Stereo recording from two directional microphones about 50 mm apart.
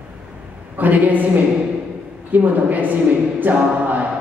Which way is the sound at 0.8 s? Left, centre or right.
Right.